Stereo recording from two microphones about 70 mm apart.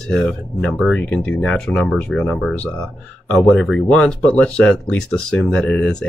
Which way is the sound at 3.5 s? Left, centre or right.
Centre.